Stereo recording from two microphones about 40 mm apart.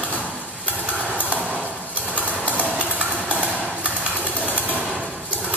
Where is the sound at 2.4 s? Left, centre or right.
Right.